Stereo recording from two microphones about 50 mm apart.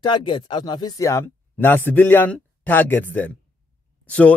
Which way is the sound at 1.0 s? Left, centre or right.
Left.